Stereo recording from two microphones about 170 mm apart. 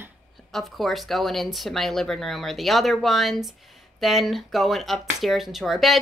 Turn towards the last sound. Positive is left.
turn(degrees=0)  # may be behind; listen again after turning